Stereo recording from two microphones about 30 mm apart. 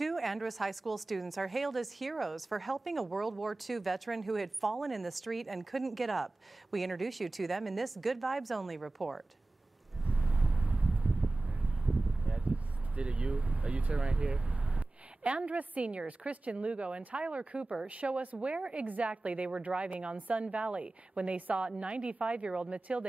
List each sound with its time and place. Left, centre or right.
0.0 s speech: centre
10.1 s wind: right
10.5 s a sound: right
12.4 s speech: right
15.2 s speech: right
20.2 s a woman's voice: right
20.4 s speech: right
21.4 s a woman's voice: right
21.6 s speech: right